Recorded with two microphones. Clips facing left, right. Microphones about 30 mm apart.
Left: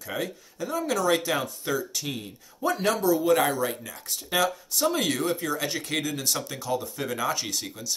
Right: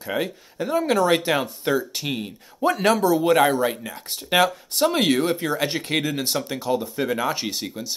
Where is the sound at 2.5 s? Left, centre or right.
Right.